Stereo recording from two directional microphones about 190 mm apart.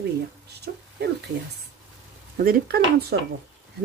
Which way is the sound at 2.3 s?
50° right (ahead or behind).